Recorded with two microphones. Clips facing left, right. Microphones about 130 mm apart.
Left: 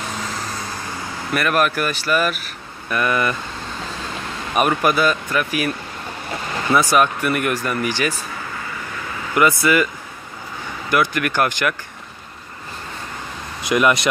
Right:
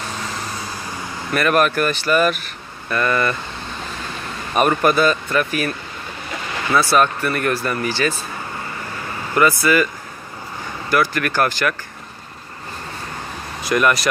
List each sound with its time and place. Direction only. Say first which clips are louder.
1.3 s speech: right 2 dB; 5° left (ahead or behind)
4.6 s speech: right 2 dB; 5° left (ahead or behind)
6.7 s speech: even; 15° left (ahead or behind)
9.3 s speech: even; 15° left (ahead or behind)
10.9 s speech: even; 20° left (ahead or behind)
13.7 s speech: left 1 dB; 20° left (ahead or behind)